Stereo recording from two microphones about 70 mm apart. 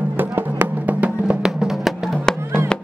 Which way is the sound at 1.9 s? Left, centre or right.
Centre.